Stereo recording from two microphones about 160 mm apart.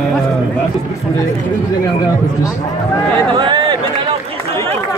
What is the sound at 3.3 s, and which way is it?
Run, 30° right (ahead or behind).